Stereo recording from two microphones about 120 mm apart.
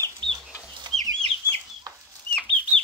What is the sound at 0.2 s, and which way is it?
Chicken, 40° right (ahead or behind).